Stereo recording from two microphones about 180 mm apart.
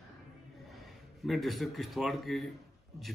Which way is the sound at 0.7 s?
Centre (ahead or behind).